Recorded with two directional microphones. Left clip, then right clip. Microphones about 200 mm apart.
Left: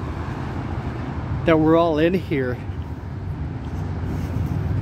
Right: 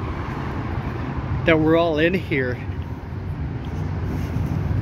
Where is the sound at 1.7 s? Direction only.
30° left (ahead or behind).